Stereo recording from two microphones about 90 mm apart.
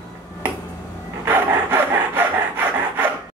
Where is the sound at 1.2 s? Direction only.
25° right (ahead or behind).